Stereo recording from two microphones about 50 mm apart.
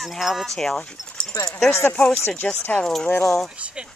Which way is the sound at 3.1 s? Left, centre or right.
Left.